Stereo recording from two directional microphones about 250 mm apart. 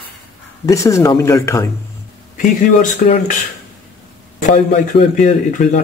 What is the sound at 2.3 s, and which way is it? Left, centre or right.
A man's voice, left.